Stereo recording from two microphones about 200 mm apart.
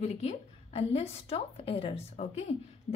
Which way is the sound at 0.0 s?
35° left (ahead or behind).